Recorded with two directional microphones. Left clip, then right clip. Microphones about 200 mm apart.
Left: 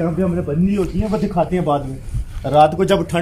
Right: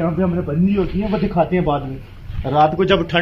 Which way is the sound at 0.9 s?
15° left (ahead or behind).